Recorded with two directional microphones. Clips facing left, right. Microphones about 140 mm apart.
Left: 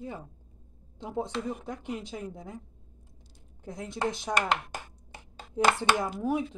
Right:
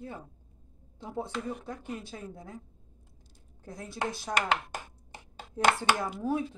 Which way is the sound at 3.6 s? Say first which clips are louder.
Left 3 dB; 20° left (ahead or behind).